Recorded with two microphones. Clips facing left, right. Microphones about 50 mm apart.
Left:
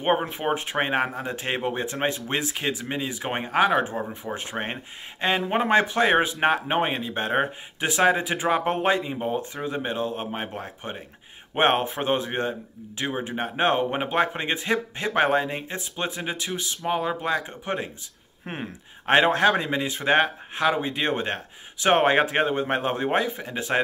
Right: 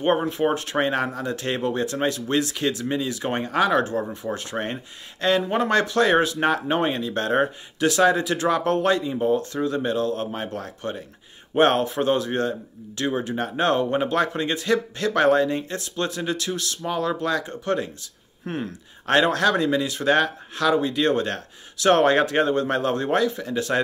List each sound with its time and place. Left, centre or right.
0.0 s speech: left